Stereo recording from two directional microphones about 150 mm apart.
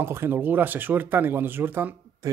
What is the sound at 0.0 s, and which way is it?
A man's voice, 15° right (ahead or behind).